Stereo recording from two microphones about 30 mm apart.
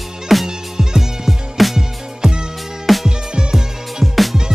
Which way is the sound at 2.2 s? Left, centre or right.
Centre.